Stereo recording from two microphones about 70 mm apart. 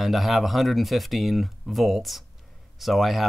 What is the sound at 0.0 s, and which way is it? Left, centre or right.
Speech, centre.